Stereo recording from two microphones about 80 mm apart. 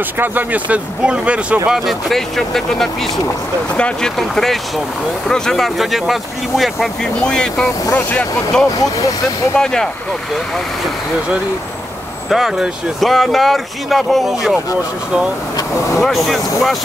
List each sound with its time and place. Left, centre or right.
0.2 s speech: right
1.7 s speech: centre
4.2 s speech: centre
7.2 s speech: centre
12.3 s speech: centre
16.0 s speech: centre